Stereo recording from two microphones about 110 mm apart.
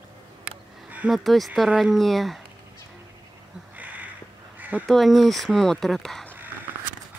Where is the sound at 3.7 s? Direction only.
15° right (ahead or behind).